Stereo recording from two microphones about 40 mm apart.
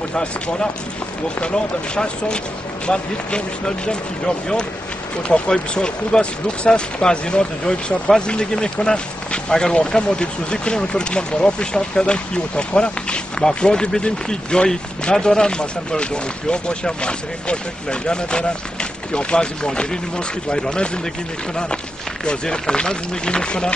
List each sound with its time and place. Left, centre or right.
0.1 s speech: left
22.2 s speech: left